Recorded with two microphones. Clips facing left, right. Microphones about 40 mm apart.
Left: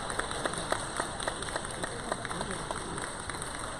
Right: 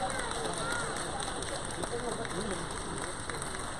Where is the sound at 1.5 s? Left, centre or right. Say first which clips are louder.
Even; left.